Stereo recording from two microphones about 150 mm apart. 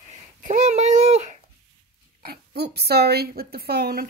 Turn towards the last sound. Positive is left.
turn(degrees=-90)